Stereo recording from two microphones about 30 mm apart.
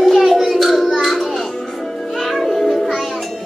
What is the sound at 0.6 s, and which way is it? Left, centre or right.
Music, centre.